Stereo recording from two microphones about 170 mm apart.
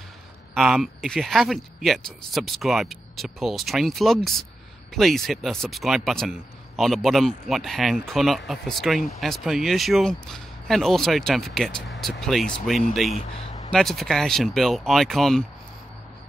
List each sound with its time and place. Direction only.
0.6 s speech: centre (ahead or behind)
13.1 s speech: 40° left (ahead or behind)
13.7 s speech: centre (ahead or behind)